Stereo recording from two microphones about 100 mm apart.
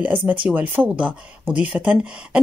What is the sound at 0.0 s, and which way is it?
Speech, 20° right (ahead or behind).